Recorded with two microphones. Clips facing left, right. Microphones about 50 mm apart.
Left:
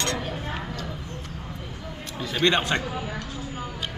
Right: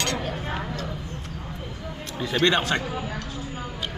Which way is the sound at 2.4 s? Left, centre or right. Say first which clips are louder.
Even; centre.